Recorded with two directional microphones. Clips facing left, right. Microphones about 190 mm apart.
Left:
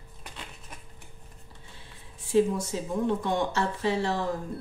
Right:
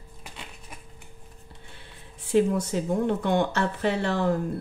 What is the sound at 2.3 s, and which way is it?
Speech, 65° right (ahead or behind).